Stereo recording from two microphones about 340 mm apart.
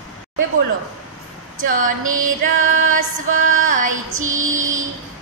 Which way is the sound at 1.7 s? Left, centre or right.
Right.